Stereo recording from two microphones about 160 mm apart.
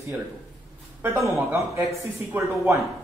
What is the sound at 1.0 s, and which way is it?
A man's voice, 15° right (ahead or behind).